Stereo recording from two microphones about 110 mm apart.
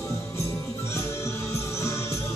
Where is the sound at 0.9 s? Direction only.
25° left (ahead or behind).